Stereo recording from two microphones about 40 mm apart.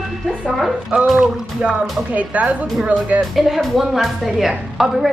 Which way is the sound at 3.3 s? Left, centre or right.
Centre.